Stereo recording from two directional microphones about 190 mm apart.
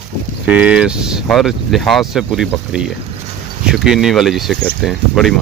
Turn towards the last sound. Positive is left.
turn(degrees=0)  # may be behind; listen again after turning